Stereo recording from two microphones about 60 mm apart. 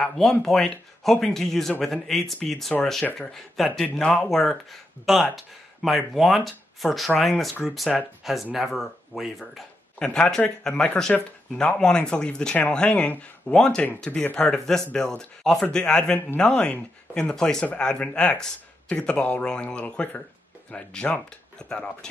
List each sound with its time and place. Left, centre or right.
0.0 s speech: centre
9.9 s speech: centre
14.5 s speech: centre